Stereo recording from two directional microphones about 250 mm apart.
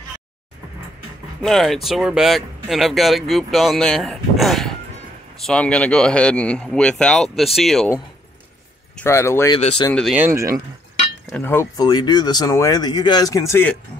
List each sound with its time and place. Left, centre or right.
1.4 s speech: centre
8.9 s speech: centre
9.6 s speech: left
9.8 s speech: centre
10.2 s speech: centre
11.3 s speech: centre